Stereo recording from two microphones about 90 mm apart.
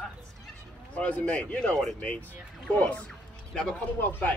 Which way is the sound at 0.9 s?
15° left (ahead or behind).